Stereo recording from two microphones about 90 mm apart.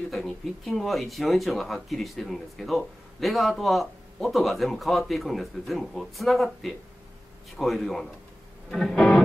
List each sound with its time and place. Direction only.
0.1 s speech: centre (ahead or behind)
8.6 s music: 5° left (ahead or behind)